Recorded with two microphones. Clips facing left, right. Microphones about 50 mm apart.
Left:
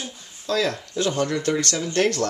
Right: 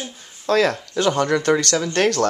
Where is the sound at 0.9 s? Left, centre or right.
Right.